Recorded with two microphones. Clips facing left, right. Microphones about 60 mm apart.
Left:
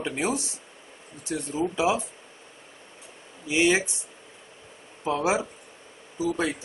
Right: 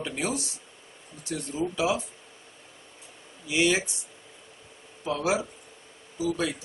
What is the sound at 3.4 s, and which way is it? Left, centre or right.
Speech, left.